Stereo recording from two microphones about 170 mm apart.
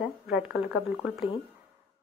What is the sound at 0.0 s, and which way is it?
Speech, 5° right (ahead or behind).